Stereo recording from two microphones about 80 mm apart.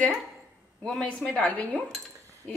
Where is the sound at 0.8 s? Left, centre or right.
Centre.